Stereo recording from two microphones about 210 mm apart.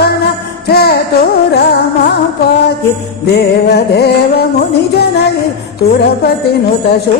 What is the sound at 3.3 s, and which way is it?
Speech, 50° left (ahead or behind).